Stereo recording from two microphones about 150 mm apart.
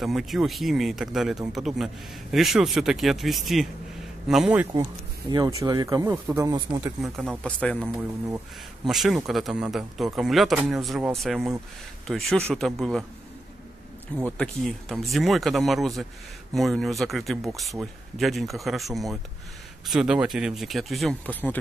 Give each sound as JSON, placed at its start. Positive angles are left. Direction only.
{"t": 0.0, "sound": "speech", "side_deg": 0}
{"t": 5.3, "sound": "speech", "side_deg": -25}
{"t": 7.0, "sound": "speech", "side_deg": 0}
{"t": 14.2, "sound": "speech", "side_deg": 5}
{"t": 21.3, "sound": "speech", "side_deg": 10}